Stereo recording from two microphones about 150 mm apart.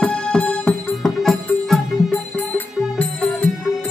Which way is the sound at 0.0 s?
5° left (ahead or behind).